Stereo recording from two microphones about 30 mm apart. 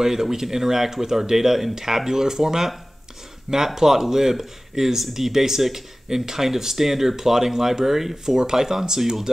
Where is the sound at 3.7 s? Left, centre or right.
Centre.